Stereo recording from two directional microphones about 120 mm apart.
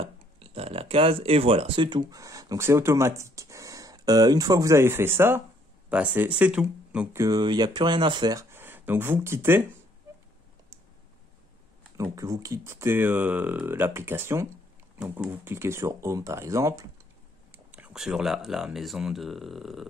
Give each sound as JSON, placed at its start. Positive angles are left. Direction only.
{"t": 0.0, "sound": "speech", "side_deg": -55}
{"t": 1.9, "sound": "speech", "side_deg": -35}
{"t": 7.1, "sound": "speech", "side_deg": -25}
{"t": 7.3, "sound": "speech", "side_deg": -35}
{"t": 8.5, "sound": "speech", "side_deg": -15}
{"t": 12.0, "sound": "speech", "side_deg": -25}
{"t": 17.5, "sound": "speech", "side_deg": -10}